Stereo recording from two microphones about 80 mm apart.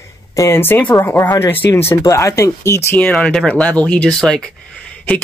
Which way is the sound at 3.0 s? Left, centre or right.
Centre.